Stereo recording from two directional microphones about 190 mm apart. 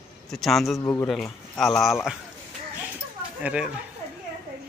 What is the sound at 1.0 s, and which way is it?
Speech, centre (ahead or behind).